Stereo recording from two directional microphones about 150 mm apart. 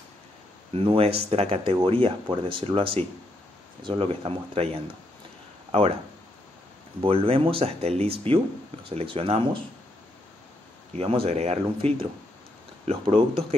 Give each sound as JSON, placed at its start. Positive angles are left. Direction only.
{"t": 0.7, "sound": "speech", "side_deg": -40}
{"t": 5.7, "sound": "speech", "side_deg": -40}
{"t": 7.0, "sound": "speech", "side_deg": -40}
{"t": 11.0, "sound": "speech", "side_deg": -40}